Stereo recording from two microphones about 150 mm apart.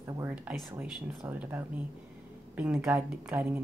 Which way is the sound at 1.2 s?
20° right (ahead or behind).